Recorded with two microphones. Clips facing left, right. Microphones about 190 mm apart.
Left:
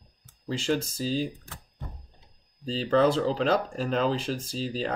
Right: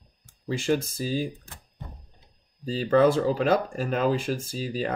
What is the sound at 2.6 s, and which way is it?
Speech, 10° right (ahead or behind).